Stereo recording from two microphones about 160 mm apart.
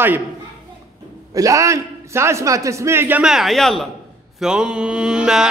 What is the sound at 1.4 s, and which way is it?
A man's voice, 20° right (ahead or behind).